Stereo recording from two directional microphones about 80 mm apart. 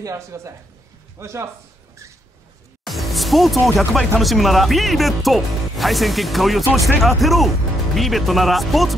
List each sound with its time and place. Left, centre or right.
0.0 s speech: right
2.8 s music: centre
4.2 s speech: centre